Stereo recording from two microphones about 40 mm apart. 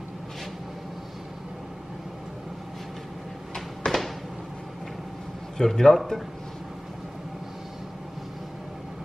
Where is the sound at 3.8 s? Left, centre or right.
Left.